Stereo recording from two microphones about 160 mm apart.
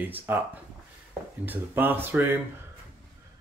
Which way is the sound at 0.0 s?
10° right (ahead or behind).